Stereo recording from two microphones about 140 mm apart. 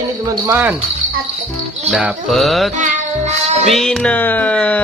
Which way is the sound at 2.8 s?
55° right (ahead or behind).